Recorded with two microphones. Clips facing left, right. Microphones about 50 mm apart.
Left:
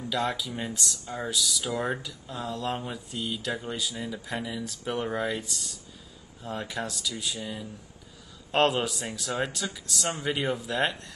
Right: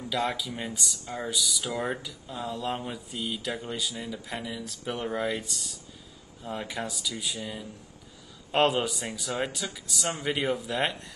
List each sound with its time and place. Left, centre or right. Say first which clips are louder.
0.0 s speech: even; centre